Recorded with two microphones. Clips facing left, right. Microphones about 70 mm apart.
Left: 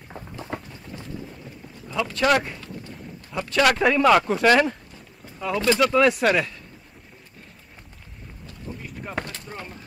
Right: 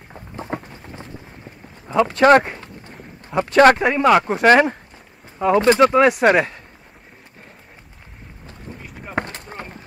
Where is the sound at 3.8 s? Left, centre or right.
Right.